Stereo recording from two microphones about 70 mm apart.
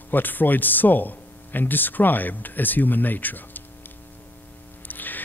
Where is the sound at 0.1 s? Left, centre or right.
Left.